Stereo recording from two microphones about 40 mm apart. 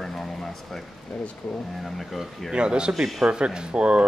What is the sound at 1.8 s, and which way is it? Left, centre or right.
Speech, centre.